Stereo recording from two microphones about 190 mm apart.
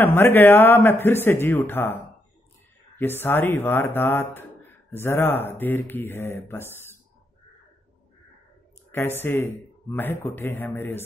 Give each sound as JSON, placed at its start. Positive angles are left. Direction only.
{"t": 0.0, "sound": "speech", "side_deg": 10}
{"t": 3.0, "sound": "speech", "side_deg": 10}
{"t": 8.9, "sound": "speech", "side_deg": 10}